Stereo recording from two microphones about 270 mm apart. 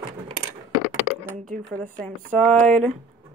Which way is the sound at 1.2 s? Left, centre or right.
Right.